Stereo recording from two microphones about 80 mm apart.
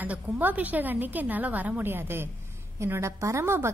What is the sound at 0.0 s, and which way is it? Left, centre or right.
A woman's voice, right.